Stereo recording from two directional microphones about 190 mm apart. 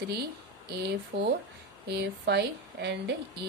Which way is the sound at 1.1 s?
60° right (ahead or behind).